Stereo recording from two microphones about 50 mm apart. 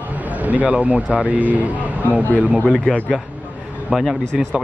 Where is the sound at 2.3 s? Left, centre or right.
Right.